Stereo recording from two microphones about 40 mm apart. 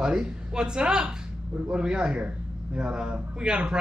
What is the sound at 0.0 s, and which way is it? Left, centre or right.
Speech, centre.